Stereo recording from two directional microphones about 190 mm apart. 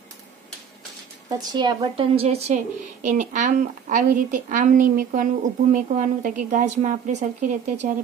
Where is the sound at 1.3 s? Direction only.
20° right (ahead or behind).